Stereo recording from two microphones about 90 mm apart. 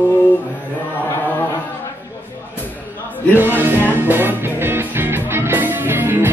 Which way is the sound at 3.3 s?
25° right (ahead or behind).